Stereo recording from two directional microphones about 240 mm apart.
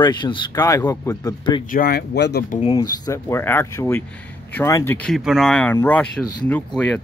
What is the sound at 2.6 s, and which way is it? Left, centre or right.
Speech, centre.